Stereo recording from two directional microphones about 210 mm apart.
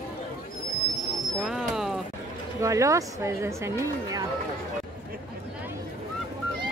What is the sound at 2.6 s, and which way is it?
Speech, 15° right (ahead or behind).